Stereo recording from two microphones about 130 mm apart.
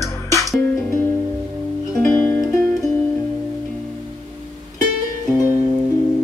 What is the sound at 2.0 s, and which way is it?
Music, 10° left (ahead or behind).